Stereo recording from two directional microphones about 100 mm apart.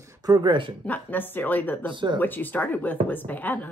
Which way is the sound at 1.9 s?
55° right (ahead or behind).